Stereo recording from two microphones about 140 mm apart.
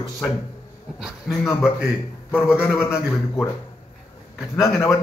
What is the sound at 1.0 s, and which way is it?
A man's voice, centre (ahead or behind).